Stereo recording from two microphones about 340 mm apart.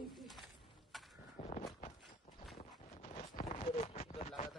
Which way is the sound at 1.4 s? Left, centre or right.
Centre.